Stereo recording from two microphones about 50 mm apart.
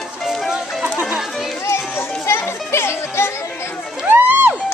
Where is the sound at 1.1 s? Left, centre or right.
Centre.